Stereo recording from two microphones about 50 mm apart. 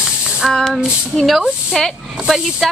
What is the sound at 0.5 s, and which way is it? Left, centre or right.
A woman's voice, centre.